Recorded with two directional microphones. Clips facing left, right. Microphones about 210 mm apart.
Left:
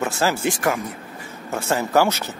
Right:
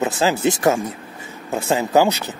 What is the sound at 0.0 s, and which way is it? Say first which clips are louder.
Speech: right 3 dB; 20° right (ahead or behind).